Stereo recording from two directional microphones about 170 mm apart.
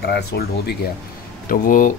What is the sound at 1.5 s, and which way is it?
Speech, 50° left (ahead or behind).